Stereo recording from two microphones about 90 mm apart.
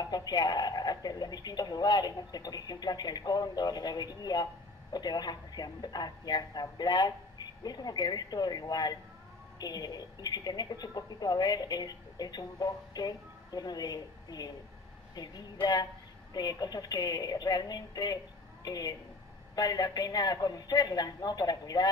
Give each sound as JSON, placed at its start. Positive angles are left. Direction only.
{"t": 0.0, "sound": "speech", "side_deg": 50}